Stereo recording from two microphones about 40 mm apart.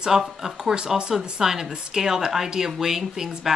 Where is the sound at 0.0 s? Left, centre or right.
Centre.